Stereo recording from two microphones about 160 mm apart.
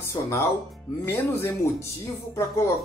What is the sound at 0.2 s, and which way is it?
Speech, 20° left (ahead or behind).